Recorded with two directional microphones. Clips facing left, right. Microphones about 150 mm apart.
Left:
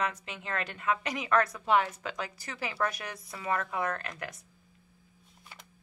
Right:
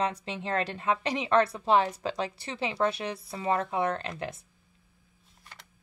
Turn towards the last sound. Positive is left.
turn(degrees=-25)  # may be behind; listen again after turning